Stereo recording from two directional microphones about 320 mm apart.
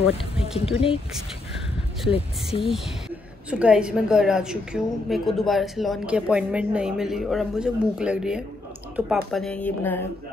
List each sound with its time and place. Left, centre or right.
0.6 s speech: centre
2.0 s speech: centre
3.4 s a woman's voice: centre